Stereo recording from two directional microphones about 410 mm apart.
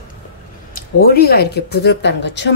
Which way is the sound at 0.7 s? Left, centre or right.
Left.